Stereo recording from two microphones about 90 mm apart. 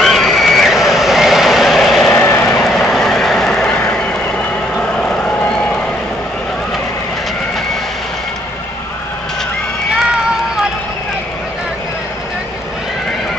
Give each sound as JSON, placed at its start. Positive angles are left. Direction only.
{"t": 0.0, "sound": "vehicle", "side_deg": 0}
{"t": 2.1, "sound": "vehicle", "side_deg": 25}
{"t": 2.4, "sound": "vehicle", "side_deg": 5}
{"t": 4.9, "sound": "vehicle", "side_deg": 10}